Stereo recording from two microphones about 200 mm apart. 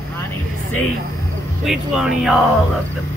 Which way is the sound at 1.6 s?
Centre (ahead or behind).